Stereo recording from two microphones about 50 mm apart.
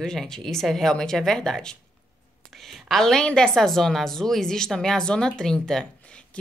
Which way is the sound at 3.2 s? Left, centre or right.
Centre.